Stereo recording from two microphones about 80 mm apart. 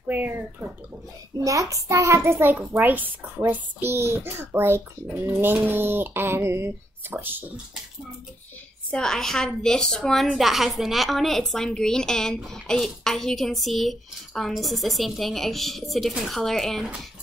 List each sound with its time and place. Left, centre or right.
0.1 s speech: right
1.4 s a child's voice: right
8.9 s a woman's voice: centre